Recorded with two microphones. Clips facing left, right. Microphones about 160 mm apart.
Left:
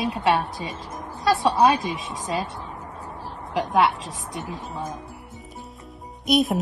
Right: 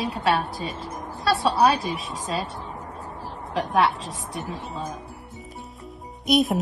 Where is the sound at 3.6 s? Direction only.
20° left (ahead or behind).